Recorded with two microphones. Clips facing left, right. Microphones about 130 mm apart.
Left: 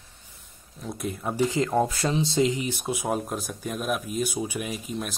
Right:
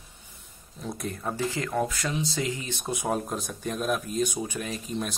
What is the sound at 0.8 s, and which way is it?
Speech, centre (ahead or behind).